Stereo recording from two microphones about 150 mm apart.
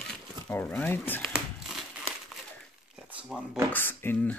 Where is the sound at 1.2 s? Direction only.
Centre (ahead or behind).